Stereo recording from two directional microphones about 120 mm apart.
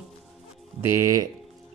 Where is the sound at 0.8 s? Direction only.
25° right (ahead or behind).